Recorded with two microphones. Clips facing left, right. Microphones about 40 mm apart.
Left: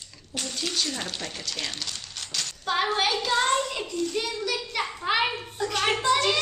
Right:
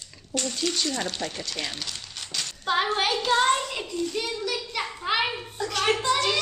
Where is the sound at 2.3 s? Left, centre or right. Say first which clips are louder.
Right 2 dB; centre.